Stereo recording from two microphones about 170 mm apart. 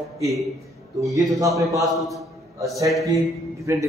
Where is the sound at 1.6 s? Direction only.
20° right (ahead or behind).